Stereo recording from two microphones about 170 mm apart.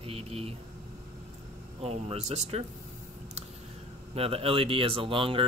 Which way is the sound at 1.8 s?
40° right (ahead or behind).